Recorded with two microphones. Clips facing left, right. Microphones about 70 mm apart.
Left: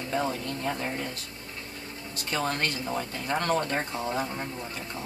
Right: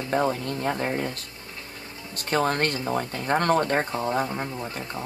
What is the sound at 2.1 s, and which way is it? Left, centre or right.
Speech, right.